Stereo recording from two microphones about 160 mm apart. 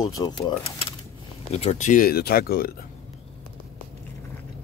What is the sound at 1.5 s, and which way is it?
Speech, 45° left (ahead or behind).